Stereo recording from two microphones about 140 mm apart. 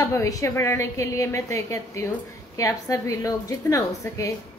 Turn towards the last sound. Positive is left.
turn(degrees=20)  # may be behind; listen again after turning